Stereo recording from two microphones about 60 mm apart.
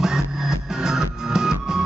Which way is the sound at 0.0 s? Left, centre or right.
Centre.